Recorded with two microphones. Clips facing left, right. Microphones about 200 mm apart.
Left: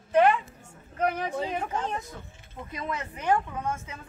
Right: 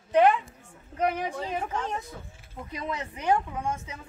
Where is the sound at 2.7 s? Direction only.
20° right (ahead or behind).